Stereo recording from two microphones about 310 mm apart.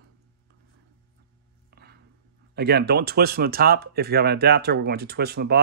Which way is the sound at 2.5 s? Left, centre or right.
Right.